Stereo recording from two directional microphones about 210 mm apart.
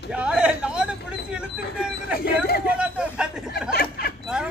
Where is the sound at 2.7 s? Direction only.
5° right (ahead or behind).